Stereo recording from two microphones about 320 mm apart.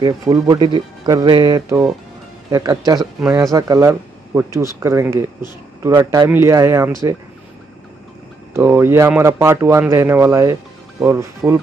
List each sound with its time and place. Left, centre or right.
0.0 s speech: centre
8.5 s speech: centre